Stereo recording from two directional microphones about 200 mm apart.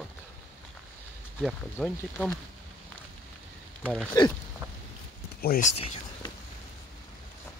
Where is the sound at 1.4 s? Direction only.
Centre (ahead or behind).